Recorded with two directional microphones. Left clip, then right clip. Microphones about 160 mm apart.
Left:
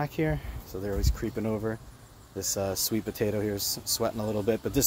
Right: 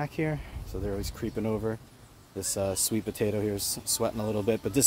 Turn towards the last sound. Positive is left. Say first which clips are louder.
# even
turn(degrees=-15)  # may be behind; listen again after turning